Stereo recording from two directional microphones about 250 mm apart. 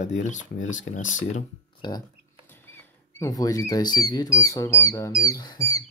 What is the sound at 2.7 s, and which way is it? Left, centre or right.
Speech, centre.